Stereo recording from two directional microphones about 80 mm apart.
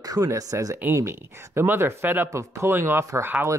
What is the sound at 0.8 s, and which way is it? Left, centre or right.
Speech, right.